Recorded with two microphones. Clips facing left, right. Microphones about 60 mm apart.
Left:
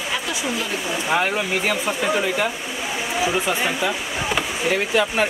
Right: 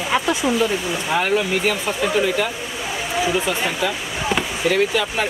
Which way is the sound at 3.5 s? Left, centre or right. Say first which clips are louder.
Even; centre.